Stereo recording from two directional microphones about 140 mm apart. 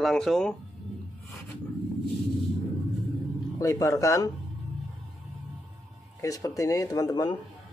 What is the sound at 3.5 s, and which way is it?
Speech, 25° left (ahead or behind).